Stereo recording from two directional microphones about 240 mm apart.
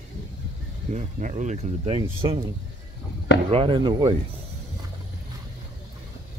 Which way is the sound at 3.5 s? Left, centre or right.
Right.